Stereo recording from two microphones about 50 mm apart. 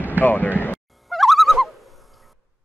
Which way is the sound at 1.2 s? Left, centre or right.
Centre.